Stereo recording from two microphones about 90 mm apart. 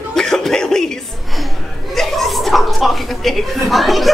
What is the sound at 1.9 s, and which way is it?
A woman's voice, centre (ahead or behind).